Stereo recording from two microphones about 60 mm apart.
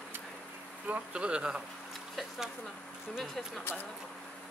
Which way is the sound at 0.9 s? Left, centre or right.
Centre.